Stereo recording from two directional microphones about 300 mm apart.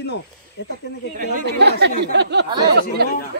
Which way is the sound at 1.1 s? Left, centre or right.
Right.